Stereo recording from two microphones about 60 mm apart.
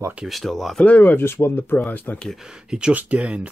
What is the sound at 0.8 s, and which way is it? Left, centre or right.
Speech, left.